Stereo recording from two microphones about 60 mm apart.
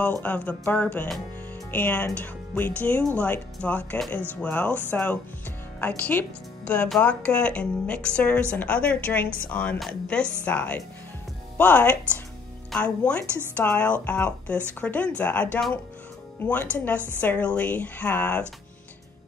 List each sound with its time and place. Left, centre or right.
0.1 s a woman's voice: left